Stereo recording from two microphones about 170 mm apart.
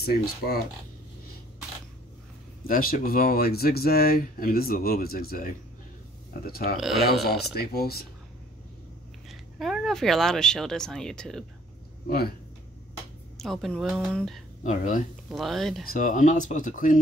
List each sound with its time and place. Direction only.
0.0 s speech: 65° left (ahead or behind)
2.6 s speech: 55° left (ahead or behind)
9.3 s speech: centre (ahead or behind)
12.1 s speech: 65° left (ahead or behind)
13.4 s speech: centre (ahead or behind)
14.6 s speech: 45° left (ahead or behind)
15.2 s speech: centre (ahead or behind)
15.8 s speech: 55° left (ahead or behind)